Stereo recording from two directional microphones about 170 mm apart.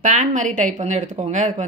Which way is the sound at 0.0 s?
50° right (ahead or behind).